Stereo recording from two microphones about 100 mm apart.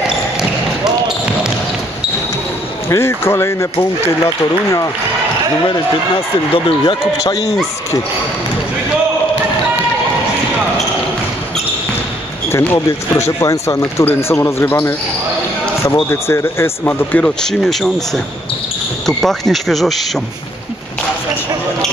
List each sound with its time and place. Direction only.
2.9 s speech: 25° left (ahead or behind)
6.5 s speech: 60° left (ahead or behind)
7.2 s speech: 35° left (ahead or behind)
12.4 s speech: 25° left (ahead or behind)
16.1 s speech: 25° left (ahead or behind)
17.4 s speech: 5° left (ahead or behind)